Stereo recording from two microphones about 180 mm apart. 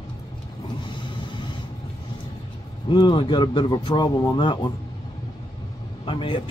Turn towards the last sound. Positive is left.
turn(degrees=25)  # may be behind; listen again after turning